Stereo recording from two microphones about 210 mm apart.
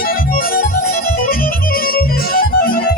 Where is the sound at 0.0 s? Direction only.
40° left (ahead or behind).